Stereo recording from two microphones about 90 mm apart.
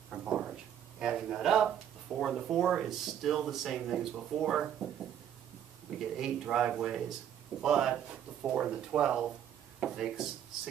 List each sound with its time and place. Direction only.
0.1 s a sound: 10° right (ahead or behind)
2.1 s speech: 5° right (ahead or behind)
5.9 s speech: 5° right (ahead or behind)